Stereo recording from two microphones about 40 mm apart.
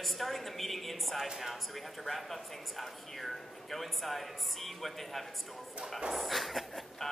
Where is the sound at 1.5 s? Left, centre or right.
Centre.